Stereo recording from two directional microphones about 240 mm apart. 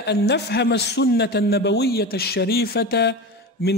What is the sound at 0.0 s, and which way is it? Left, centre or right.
Speech, left.